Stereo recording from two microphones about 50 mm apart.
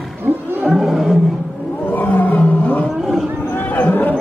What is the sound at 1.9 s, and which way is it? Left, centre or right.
Roar, left.